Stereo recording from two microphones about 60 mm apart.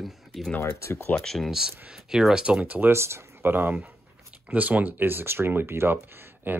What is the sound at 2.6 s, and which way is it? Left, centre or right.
Speech, right.